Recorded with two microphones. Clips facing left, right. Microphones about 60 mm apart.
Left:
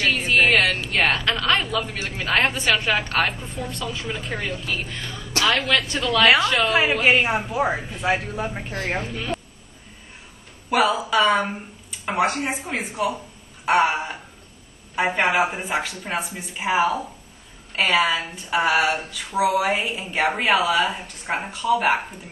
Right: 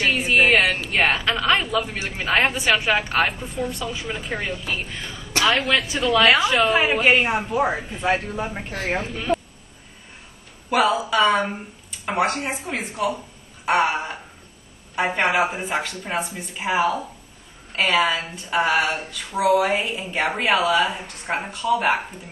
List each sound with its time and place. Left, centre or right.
0.0 s a sound: centre
0.8 s a woman's voice: centre
8.7 s a woman's voice: centre
9.1 s speech: centre
10.7 s a woman's voice: centre